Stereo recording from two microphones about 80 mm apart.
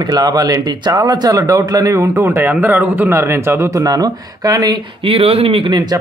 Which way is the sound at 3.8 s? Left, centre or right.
Right.